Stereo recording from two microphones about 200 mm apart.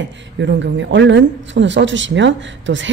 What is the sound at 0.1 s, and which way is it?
Speech, 65° right (ahead or behind).